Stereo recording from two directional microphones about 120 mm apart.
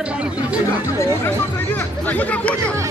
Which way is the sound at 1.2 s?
15° left (ahead or behind).